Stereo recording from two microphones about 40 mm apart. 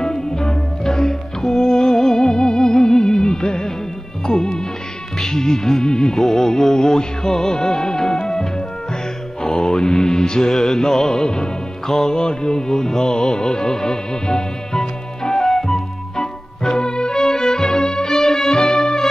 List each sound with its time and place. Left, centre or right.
0.0 s music: centre
9.4 s mantra: centre
11.9 s music: centre